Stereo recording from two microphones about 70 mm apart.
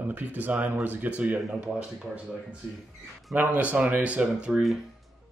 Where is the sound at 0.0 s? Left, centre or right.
Right.